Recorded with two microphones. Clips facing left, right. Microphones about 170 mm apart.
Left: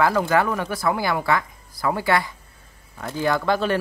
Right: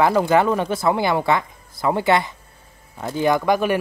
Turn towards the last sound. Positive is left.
turn(degrees=-15)  # may be behind; listen again after turning